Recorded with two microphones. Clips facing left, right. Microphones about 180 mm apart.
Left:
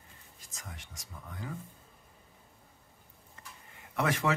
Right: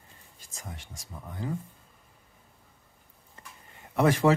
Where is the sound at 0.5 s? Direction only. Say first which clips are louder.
Right 5 dB; 30° right (ahead or behind).